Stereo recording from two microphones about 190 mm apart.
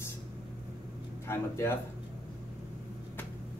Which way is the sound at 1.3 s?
15° left (ahead or behind).